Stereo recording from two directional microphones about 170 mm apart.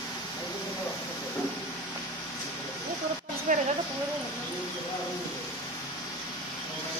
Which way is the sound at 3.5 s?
45° right (ahead or behind).